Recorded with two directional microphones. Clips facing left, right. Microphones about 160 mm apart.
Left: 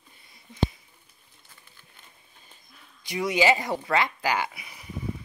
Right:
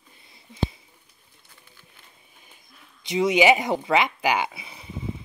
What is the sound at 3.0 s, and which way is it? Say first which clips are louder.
Speech: right 5 dB; 20° right (ahead or behind).